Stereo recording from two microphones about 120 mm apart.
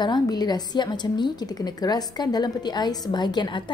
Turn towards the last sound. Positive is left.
turn(degrees=40)  # may be behind; listen again after turning